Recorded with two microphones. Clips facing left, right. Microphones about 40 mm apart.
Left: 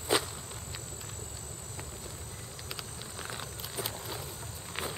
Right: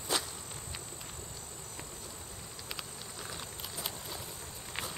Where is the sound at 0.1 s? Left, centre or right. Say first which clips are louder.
Left 5 dB; left.